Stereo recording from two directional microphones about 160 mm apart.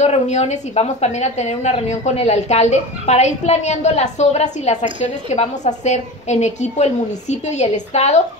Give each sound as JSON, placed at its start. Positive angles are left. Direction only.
{"t": 0.0, "sound": "a woman's voice", "side_deg": 45}